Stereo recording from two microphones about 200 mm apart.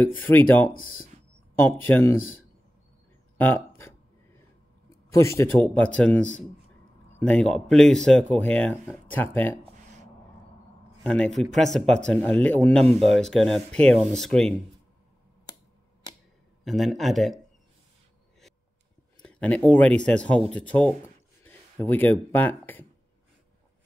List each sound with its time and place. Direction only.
0.0 s a man's voice: 10° left (ahead or behind)
1.7 s a man's voice: 10° left (ahead or behind)
3.3 s speech: 10° left (ahead or behind)
5.1 s a man's voice: 15° left (ahead or behind)
11.1 s a man's voice: 5° left (ahead or behind)
12.8 s speech: 30° right (ahead or behind)
13.1 s speech: centre (ahead or behind)
16.6 s speech: centre (ahead or behind)
19.2 s a man's voice: 5° left (ahead or behind)